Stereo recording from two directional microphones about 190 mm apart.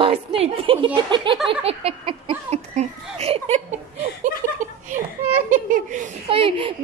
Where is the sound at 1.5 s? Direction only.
30° right (ahead or behind).